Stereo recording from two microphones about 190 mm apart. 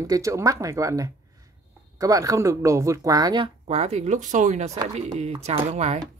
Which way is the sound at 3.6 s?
35° right (ahead or behind).